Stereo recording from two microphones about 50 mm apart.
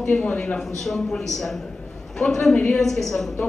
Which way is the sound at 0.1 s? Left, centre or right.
Centre.